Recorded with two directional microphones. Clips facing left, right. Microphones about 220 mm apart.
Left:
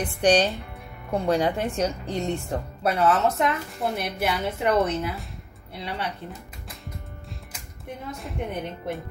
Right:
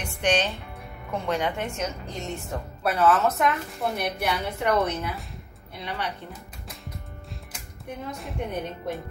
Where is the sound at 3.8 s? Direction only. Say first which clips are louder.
Even; centre (ahead or behind).